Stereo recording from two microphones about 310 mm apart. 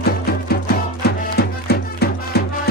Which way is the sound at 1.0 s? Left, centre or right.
Left.